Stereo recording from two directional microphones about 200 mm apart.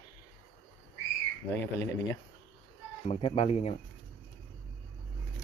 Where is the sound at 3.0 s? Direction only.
30° left (ahead or behind).